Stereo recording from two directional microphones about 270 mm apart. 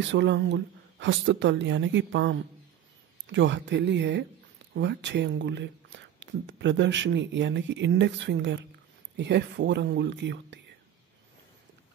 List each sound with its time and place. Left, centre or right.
0.1 s speech: right